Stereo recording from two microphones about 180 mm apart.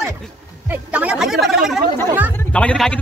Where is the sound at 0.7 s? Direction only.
10° right (ahead or behind).